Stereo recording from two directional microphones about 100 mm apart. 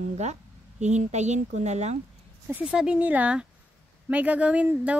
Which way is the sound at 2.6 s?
10° right (ahead or behind).